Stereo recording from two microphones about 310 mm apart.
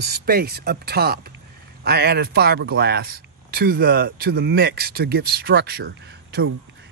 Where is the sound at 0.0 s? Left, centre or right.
Right.